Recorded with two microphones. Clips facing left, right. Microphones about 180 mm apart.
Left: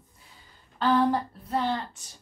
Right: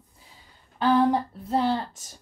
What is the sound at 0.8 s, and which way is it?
Speech, 10° right (ahead or behind).